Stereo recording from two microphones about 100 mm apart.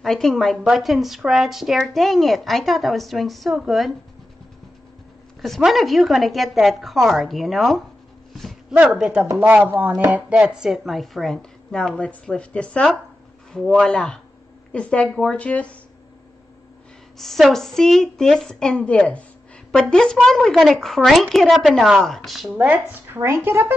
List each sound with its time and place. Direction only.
0.0 s speech: 5° left (ahead or behind)
5.4 s speech: centre (ahead or behind)
8.3 s a sound: centre (ahead or behind)
8.7 s chopping: 5° right (ahead or behind)
10.4 s a woman's voice: 5° right (ahead or behind); by 15.7 s 15° left (ahead or behind)
17.2 s speech: centre (ahead or behind)
22.6 s speech: 20° right (ahead or behind)